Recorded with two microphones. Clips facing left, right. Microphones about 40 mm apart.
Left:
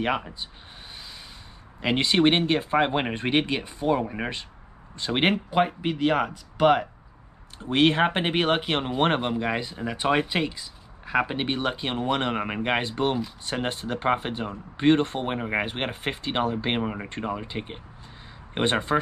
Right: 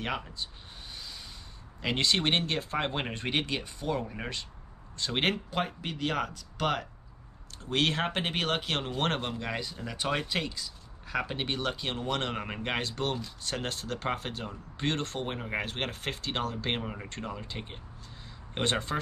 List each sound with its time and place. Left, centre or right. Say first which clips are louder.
0.0 s speech: left 7 dB; left
1.8 s speech: left 7 dB; centre